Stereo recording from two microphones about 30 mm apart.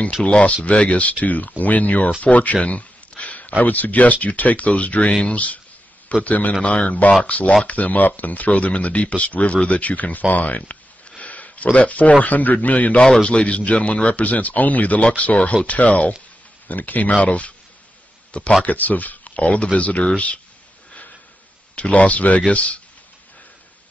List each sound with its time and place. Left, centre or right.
0.2 s speech: left
1.2 s speech: left
2.2 s a sound: left
3.6 s speech: left
6.2 s a man's voice: left
6.6 s speech: left
6.9 s speech: left
9.8 s speech: left
13.2 s speech: left
16.6 s speech: left
18.3 s speech: left
18.7 s speech: left
21.7 s speech: left